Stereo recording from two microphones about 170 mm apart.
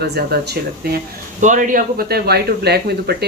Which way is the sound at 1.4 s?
50° right (ahead or behind).